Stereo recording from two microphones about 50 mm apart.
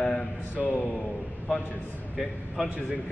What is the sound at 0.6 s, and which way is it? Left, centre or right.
Speech, left.